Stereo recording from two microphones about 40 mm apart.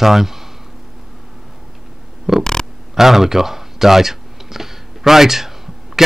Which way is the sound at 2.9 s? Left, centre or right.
Centre.